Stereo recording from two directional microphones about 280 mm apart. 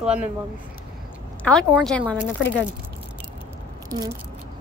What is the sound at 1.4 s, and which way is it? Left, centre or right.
Speech, centre.